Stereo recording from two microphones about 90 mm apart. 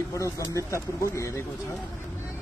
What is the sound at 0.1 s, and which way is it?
A man's voice, 35° left (ahead or behind).